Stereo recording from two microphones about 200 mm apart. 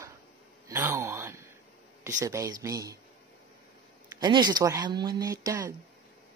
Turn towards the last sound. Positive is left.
turn(degrees=-15)  # may be behind; listen again after turning